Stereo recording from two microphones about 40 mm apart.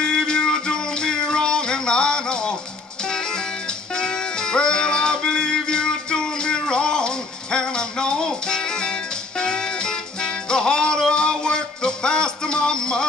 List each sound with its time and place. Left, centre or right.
0.0 s music: centre
4.0 s music: centre